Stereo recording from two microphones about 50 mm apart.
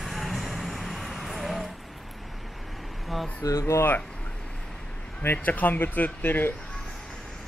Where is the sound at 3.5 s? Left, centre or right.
Left.